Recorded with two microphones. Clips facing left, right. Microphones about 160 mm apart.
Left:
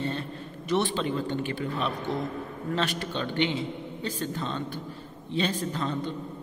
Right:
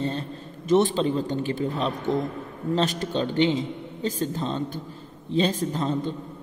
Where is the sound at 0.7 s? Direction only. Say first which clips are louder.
Right 6 dB; 45° right (ahead or behind).